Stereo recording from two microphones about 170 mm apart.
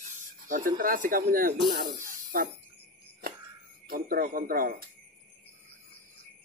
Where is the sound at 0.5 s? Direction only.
55° right (ahead or behind).